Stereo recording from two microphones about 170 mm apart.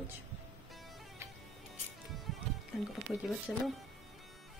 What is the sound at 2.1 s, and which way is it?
Music, centre (ahead or behind).